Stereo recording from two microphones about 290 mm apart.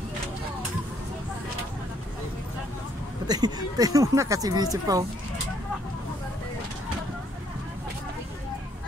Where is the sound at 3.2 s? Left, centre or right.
Centre.